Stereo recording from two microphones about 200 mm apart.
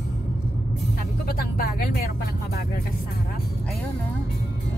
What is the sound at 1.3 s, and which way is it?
Speech, 45° left (ahead or behind).